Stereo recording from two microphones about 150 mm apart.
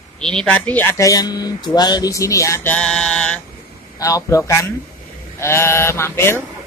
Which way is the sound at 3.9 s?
20° left (ahead or behind).